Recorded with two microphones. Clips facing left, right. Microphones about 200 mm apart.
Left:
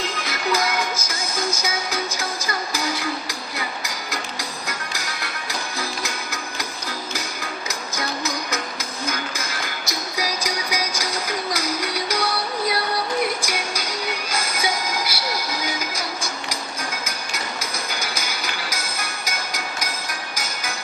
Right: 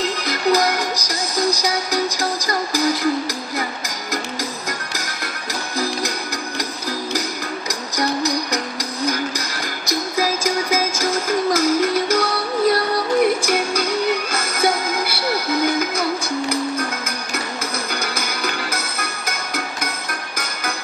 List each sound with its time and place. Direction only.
0.2 s music: 40° right (ahead or behind); by 16.5 s 60° right (ahead or behind)
17.9 s music: 55° right (ahead or behind)